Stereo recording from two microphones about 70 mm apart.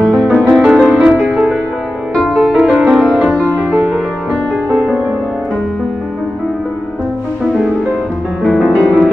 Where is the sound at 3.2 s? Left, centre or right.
Centre.